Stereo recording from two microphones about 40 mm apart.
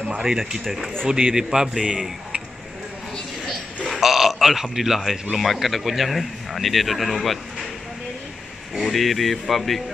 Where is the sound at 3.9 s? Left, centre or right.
Centre.